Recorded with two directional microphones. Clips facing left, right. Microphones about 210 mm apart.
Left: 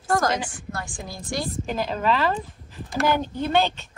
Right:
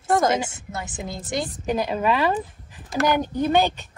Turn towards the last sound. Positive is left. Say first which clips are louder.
# right 2 dB
turn(degrees=-15)  # may be behind; listen again after turning